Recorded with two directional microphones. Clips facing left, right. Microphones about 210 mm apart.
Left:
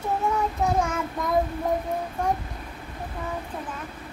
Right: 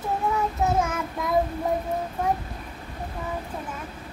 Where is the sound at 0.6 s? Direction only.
5° right (ahead or behind).